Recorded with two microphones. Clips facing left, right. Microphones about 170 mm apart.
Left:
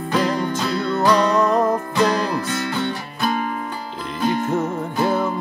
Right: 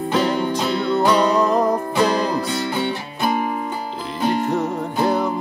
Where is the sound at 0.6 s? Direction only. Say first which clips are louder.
Right 2 dB; 20° right (ahead or behind).